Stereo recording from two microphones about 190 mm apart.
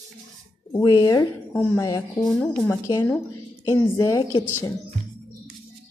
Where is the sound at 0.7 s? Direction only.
20° left (ahead or behind).